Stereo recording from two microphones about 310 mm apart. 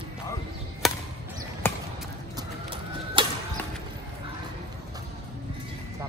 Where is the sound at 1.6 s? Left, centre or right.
Centre.